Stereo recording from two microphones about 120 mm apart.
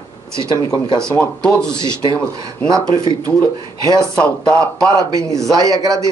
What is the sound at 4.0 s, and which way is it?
Speech, 5° left (ahead or behind).